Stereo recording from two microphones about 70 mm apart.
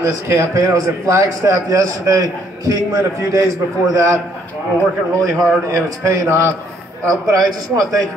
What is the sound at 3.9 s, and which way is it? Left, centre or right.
A man's voice, right.